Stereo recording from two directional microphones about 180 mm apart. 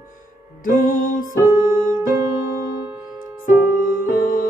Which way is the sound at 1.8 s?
15° right (ahead or behind).